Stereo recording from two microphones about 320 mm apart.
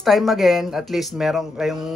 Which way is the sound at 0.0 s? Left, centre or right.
Centre.